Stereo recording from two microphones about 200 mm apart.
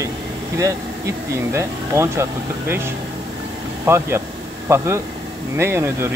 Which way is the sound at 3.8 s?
10° right (ahead or behind).